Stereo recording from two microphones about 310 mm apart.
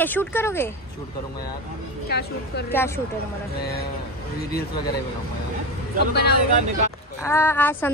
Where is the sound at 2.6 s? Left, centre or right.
Centre.